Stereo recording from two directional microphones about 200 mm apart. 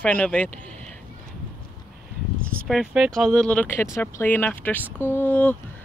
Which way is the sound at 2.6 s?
Centre (ahead or behind).